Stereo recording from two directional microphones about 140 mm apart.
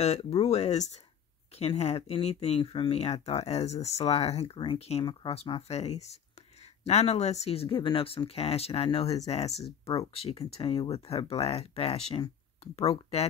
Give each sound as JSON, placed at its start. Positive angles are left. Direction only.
{"t": 0.0, "sound": "speech", "side_deg": 50}
{"t": 9.0, "sound": "speech", "side_deg": 25}
{"t": 9.3, "sound": "speech", "side_deg": 50}